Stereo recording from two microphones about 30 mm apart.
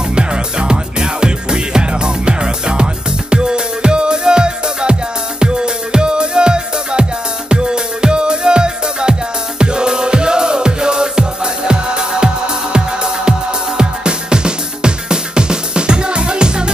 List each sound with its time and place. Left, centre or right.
0.1 s music: right